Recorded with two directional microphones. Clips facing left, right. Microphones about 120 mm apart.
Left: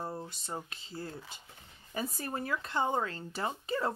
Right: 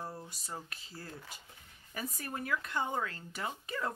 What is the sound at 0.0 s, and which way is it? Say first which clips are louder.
Speech: left 4 dB; 25° left (ahead or behind).